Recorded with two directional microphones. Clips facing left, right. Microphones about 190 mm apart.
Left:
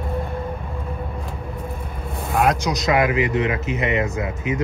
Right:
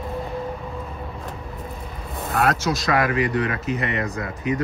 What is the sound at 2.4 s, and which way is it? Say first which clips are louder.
Speech: left 2 dB; 15° left (ahead or behind).